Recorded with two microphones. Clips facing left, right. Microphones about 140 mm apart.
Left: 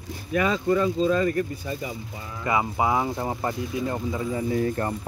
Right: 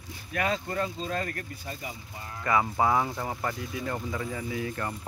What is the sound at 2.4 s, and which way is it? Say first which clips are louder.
Speech: left 1 dB; 15° left (ahead or behind).